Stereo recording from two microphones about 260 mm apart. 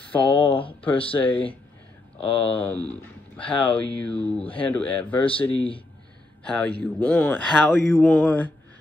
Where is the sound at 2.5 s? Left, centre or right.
Centre.